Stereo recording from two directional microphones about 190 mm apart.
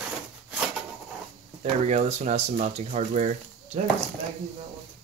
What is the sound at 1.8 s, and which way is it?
Speech, 35° right (ahead or behind).